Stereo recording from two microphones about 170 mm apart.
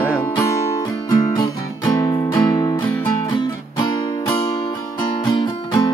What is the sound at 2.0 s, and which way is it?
Music, 25° left (ahead or behind).